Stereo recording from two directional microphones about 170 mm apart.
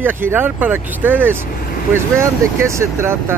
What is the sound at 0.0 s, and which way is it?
Speech, 10° right (ahead or behind).